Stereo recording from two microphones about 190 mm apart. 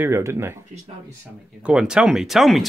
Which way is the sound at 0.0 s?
15° right (ahead or behind).